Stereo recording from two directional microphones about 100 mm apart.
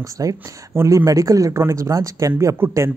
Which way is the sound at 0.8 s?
25° right (ahead or behind).